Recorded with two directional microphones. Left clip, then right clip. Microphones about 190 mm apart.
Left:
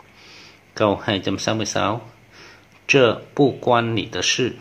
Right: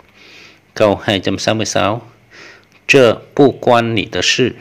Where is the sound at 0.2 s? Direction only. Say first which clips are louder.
Right 5 dB; 15° right (ahead or behind).